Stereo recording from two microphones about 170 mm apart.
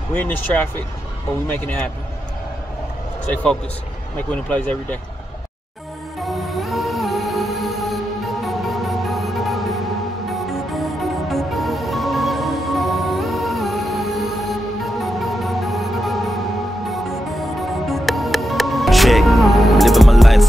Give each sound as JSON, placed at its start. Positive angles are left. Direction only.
{"t": 1.5, "sound": "speech", "side_deg": 10}
{"t": 4.3, "sound": "speech", "side_deg": 10}
{"t": 6.2, "sound": "music", "side_deg": 0}
{"t": 17.6, "sound": "music", "side_deg": 0}